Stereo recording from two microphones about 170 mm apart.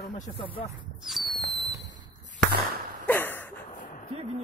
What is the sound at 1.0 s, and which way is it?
Fireworks, centre (ahead or behind).